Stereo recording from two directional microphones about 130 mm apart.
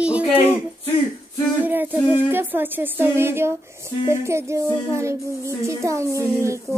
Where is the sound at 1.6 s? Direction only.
15° right (ahead or behind).